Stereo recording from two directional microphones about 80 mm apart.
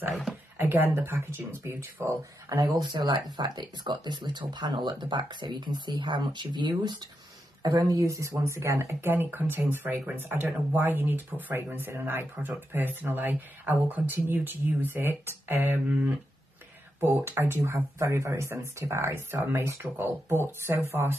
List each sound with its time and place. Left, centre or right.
0.6 s speech: right
2.9 s speech: right
7.6 s speech: right
17.0 s speech: right